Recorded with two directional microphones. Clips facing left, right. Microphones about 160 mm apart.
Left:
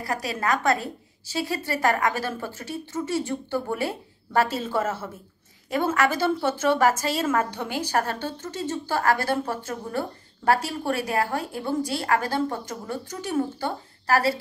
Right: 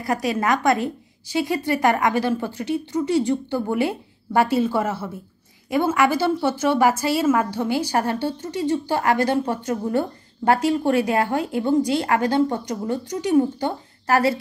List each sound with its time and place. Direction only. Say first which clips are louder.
0.4 s a woman's voice: right 2 dB; 15° right (ahead or behind)